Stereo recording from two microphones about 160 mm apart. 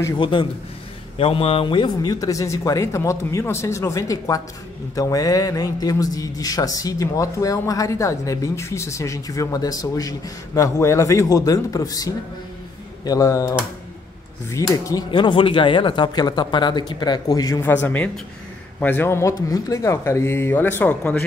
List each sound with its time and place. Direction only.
0.2 s a man's voice: 30° left (ahead or behind); by 21.2 s 10° left (ahead or behind)